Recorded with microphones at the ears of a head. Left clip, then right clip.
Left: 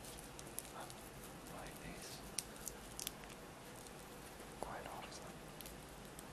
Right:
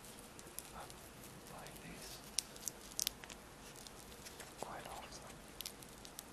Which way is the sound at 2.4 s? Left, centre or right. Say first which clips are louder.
Right 7 dB; right.